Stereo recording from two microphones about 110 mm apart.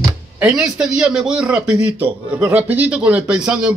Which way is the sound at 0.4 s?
5° right (ahead or behind).